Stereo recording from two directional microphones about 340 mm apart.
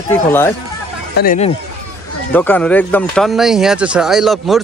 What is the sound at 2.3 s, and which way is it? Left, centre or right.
Speech, centre.